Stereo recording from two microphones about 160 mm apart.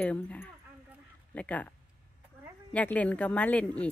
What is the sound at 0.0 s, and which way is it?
Speech, 10° left (ahead or behind).